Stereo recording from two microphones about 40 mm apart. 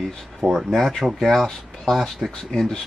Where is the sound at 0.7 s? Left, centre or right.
Centre.